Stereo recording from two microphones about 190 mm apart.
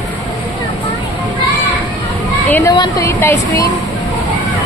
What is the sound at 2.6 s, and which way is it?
Speech, 20° left (ahead or behind).